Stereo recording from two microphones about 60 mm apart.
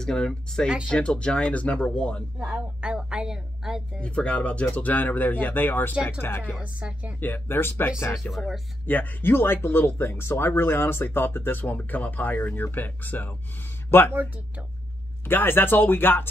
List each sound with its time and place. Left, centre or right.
0.0 s speech: centre
2.4 s a woman's voice: centre
4.0 s speech: left
6.6 s a woman's voice: centre
7.2 s speech: left
15.2 s speech: left